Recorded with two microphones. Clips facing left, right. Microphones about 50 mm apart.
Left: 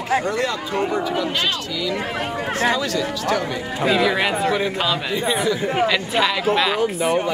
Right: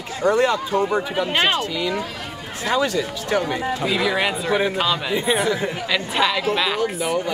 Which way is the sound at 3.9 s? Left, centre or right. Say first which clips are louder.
Left 3 dB; centre.